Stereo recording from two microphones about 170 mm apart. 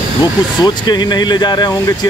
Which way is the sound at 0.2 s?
25° left (ahead or behind).